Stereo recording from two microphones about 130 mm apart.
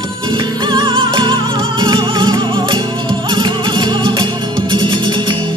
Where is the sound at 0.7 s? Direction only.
40° right (ahead or behind).